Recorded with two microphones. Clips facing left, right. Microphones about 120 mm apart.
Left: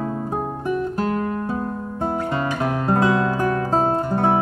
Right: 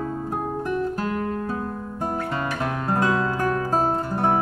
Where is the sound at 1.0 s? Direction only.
20° left (ahead or behind).